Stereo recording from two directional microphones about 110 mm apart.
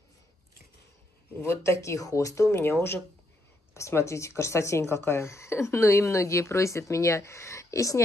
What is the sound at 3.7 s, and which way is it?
Speech, 25° left (ahead or behind).